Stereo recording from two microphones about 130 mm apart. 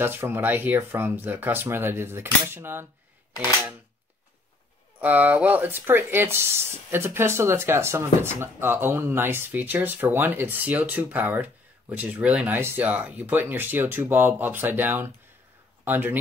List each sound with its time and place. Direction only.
0.0 s speech: 15° right (ahead or behind)
5.0 s speech: 10° right (ahead or behind)